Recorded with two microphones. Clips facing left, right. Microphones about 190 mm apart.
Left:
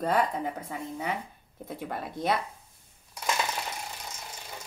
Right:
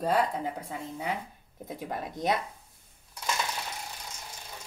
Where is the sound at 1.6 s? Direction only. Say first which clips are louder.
Even; 15° right (ahead or behind).